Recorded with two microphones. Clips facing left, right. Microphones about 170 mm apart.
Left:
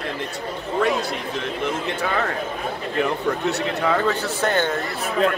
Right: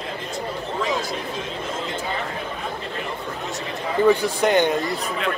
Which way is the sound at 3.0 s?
70° left (ahead or behind).